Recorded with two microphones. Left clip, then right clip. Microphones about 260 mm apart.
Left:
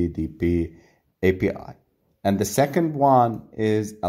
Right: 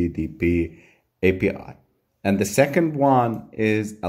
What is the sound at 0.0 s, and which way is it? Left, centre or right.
Speech, centre.